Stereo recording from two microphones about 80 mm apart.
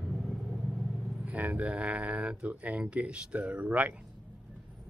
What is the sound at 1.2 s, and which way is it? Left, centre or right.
Speech, centre.